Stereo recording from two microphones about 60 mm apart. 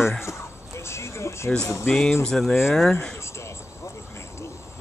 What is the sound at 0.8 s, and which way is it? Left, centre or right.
Music, left.